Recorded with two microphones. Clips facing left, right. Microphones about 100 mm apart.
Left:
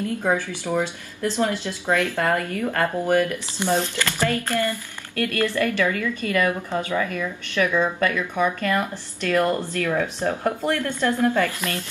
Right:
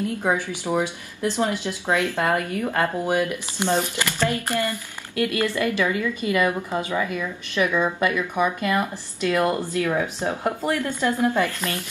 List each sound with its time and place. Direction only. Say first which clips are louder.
0.2 s a woman's voice: even; 15° right (ahead or behind)